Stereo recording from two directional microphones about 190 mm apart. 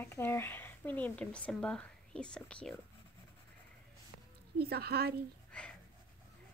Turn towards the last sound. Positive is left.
turn(degrees=-55)  # may be behind; listen again after turning